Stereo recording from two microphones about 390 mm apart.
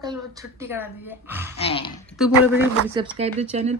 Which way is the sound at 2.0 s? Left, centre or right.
Centre.